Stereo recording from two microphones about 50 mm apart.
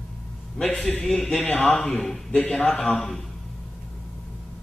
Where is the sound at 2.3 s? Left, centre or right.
Left.